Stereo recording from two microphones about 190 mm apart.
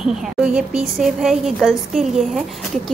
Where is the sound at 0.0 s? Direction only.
5° right (ahead or behind).